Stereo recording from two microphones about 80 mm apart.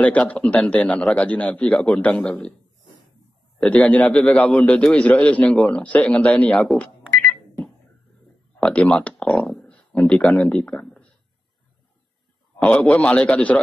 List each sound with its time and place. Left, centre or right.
0.0 s a man's voice: centre
3.7 s a man's voice: centre
8.7 s speech: centre
10.2 s a man's voice: centre
10.8 s a sound: centre
12.6 s a man's voice: centre